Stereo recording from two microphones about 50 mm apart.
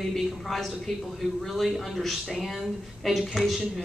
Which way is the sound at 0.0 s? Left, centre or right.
Centre.